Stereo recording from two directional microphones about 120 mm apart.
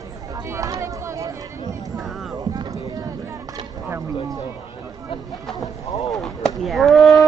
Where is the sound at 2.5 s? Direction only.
30° right (ahead or behind).